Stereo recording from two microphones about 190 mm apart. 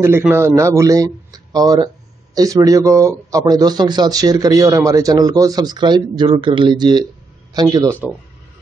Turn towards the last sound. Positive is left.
turn(degrees=-20)  # may be behind; listen again after turning